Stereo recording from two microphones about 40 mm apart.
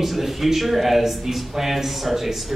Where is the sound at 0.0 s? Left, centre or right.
Centre.